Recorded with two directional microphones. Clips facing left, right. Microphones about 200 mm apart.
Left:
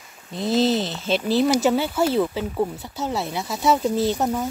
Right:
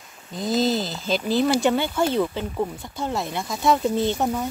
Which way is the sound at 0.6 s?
Centre (ahead or behind).